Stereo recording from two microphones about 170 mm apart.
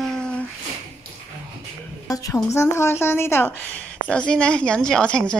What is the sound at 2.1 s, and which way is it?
A woman's voice, 20° left (ahead or behind).